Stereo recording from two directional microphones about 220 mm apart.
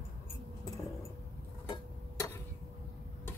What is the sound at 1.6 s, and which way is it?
Tick-tock, 20° left (ahead or behind).